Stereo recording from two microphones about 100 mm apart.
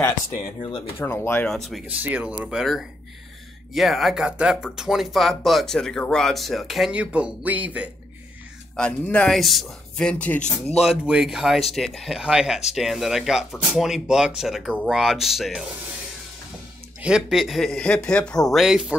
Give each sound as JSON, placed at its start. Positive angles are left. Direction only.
{"t": 0.6, "sound": "speech", "side_deg": 65}
{"t": 0.9, "sound": "speech", "side_deg": 25}
{"t": 1.9, "sound": "speech", "side_deg": -15}
{"t": 6.9, "sound": "speech", "side_deg": -10}
{"t": 9.0, "sound": "speech", "side_deg": 15}
{"t": 9.3, "sound": "speech", "side_deg": 0}
{"t": 10.8, "sound": "speech", "side_deg": -5}
{"t": 17.0, "sound": "speech", "side_deg": -5}